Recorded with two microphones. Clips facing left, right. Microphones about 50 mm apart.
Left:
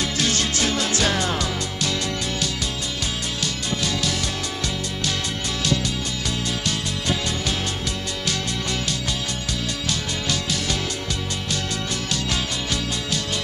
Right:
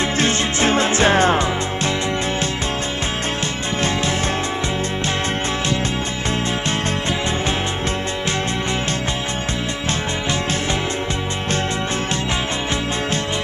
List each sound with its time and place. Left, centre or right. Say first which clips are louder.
0.2 s music: right 4 dB; right